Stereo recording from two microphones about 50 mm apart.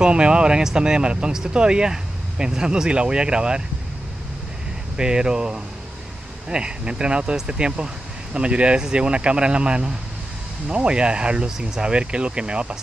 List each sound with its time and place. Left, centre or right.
0.0 s speech: centre
4.9 s speech: centre